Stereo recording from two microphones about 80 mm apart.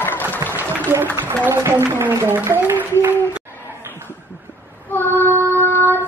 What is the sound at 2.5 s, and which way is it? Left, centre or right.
Music, right.